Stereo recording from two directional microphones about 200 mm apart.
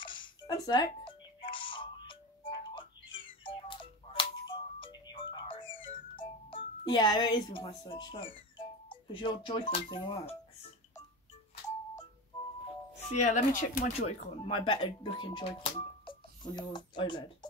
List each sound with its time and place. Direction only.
0.0 s music: 25° left (ahead or behind)
6.5 s speech: 20° left (ahead or behind)
13.1 s speech: 35° left (ahead or behind)